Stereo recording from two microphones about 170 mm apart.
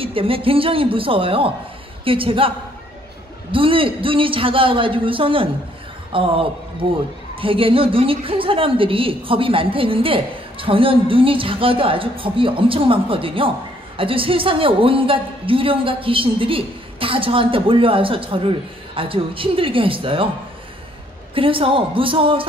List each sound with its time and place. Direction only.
0.0 s a woman's voice: 30° right (ahead or behind)
3.5 s a woman's voice: 30° right (ahead or behind)
21.4 s a woman's voice: 30° right (ahead or behind)